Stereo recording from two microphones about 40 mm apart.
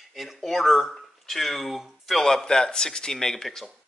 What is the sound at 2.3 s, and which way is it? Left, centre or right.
Speech, centre.